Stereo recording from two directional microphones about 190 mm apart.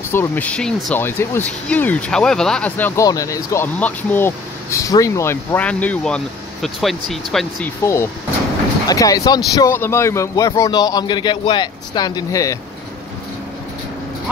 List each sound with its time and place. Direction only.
0.1 s speech: 10° left (ahead or behind)
7.8 s speech: 15° left (ahead or behind)